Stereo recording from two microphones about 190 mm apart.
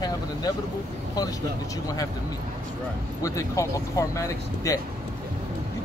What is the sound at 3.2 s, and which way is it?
Speech, 15° left (ahead or behind).